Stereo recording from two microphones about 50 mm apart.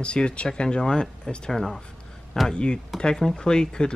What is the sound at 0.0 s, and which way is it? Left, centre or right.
Speech, centre.